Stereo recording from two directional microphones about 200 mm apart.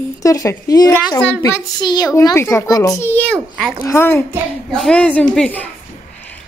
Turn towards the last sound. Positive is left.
turn(degrees=5)  # may be behind; listen again after turning